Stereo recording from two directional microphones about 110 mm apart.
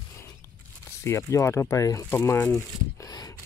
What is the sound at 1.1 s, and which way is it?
Speech, 25° left (ahead or behind).